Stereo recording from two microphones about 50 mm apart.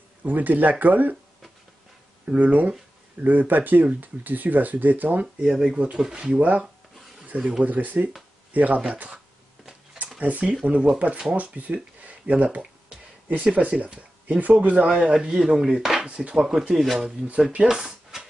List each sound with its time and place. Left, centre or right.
0.2 s speech: right
2.2 s speech: right
5.9 s speech: centre
6.2 s speech: right
10.5 s speech: right
12.9 s a sound: centre
13.4 s speech: right
15.2 s speech: centre